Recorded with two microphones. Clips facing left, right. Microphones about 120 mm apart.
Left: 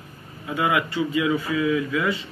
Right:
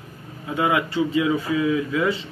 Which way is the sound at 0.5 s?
25° right (ahead or behind).